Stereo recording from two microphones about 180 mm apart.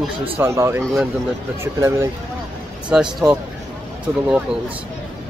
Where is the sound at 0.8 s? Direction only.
Centre (ahead or behind).